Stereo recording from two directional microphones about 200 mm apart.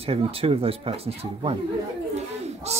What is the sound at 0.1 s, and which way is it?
Speech, 30° right (ahead or behind).